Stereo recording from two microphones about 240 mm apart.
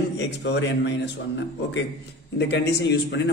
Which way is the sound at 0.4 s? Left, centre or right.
Left.